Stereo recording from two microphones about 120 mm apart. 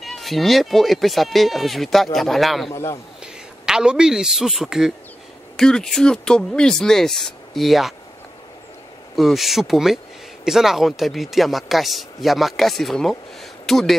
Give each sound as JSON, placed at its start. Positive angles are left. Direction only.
{"t": 0.0, "sound": "speech", "side_deg": 0}
{"t": 2.7, "sound": "a man's voice", "side_deg": 25}
{"t": 3.6, "sound": "speech", "side_deg": -5}
{"t": 9.1, "sound": "speech", "side_deg": 0}